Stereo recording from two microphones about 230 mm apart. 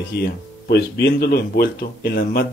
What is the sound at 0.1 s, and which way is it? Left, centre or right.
Speech, left.